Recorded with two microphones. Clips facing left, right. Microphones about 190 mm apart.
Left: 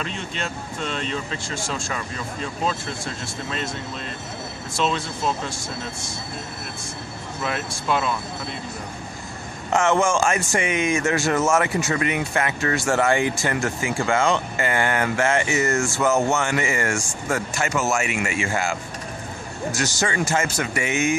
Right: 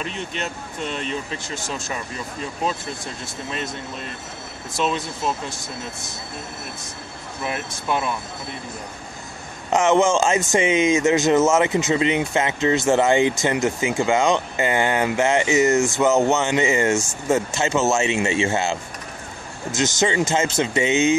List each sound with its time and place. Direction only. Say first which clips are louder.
0.0 s speech: right 1 dB; 15° right (ahead or behind)
4.7 s speech: right 1 dB; 15° right (ahead or behind)
7.4 s speech: even; 15° right (ahead or behind)
9.7 s a man's voice: right 3 dB; 20° right (ahead or behind)